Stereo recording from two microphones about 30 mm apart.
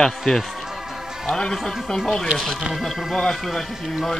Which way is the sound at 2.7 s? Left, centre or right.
Centre.